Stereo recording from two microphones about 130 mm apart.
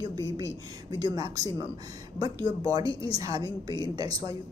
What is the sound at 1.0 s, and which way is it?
A woman's voice, 30° right (ahead or behind).